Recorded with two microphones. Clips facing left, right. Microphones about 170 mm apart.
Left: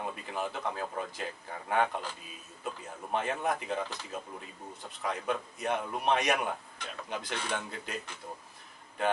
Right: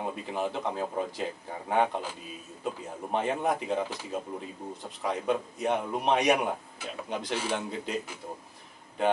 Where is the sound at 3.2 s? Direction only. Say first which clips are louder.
Right 4 dB; 5° right (ahead or behind).